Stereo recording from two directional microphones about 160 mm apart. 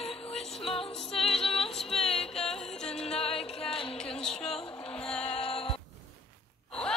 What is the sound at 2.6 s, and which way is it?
Music, 5° left (ahead or behind).